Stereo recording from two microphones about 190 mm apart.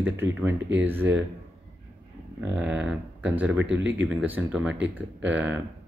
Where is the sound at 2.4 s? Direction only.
10° right (ahead or behind).